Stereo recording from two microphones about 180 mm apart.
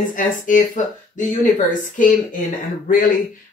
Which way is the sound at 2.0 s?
45° left (ahead or behind).